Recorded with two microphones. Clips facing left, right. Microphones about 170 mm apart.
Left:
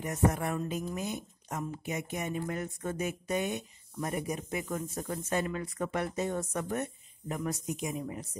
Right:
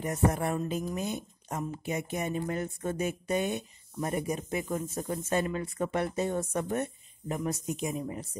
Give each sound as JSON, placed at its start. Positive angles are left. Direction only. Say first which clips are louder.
{"t": 0.0, "sound": "speech", "louder": "right 1 dB", "side_deg": -35}